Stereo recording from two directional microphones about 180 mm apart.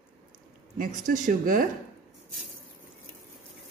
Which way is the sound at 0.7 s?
45° right (ahead or behind).